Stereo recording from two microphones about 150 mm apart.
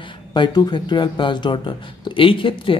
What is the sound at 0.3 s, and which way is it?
Speech, 30° left (ahead or behind).